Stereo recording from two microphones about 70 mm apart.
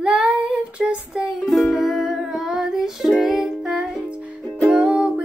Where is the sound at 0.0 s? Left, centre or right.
Centre.